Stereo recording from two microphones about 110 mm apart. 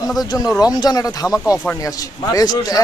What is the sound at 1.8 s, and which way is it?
Speech, 35° left (ahead or behind).